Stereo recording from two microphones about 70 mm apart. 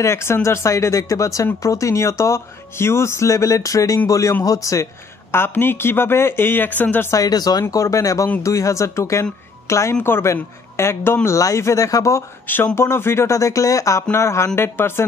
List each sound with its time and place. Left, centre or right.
0.0 s speech: left
5.3 s speech: left
7.1 s speech: left
7.7 s speech: left
12.4 s speech: left